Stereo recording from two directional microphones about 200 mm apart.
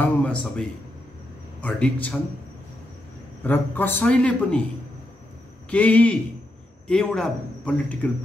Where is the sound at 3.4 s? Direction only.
10° left (ahead or behind).